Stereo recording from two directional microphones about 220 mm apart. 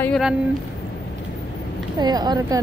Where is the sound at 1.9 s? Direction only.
20° right (ahead or behind).